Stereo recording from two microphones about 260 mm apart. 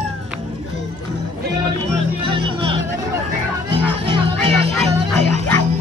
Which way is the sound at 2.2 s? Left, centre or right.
Right.